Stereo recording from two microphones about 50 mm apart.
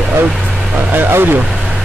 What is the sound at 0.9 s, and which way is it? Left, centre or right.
Speech, right.